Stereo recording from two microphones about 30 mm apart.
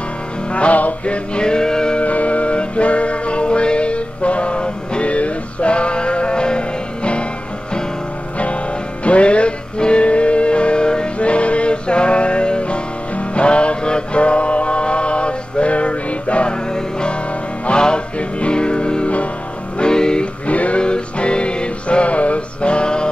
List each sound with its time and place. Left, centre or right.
0.5 s music: left
1.4 s music: left
2.0 s music: left
9.0 s music: left
11.1 s music: left
17.6 s music: left
20.4 s music: left
20.8 s music: left